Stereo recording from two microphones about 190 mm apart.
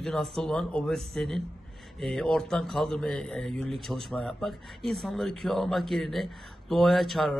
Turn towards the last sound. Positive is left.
turn(degrees=0)  # may be behind; listen again after turning